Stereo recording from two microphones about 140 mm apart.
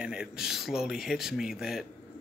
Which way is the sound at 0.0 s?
5° right (ahead or behind).